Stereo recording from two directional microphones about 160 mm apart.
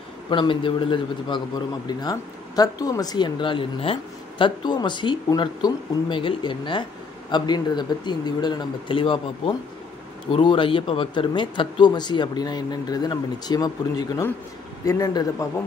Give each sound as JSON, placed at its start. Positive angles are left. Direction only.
{"t": 0.3, "sound": "speech", "side_deg": 30}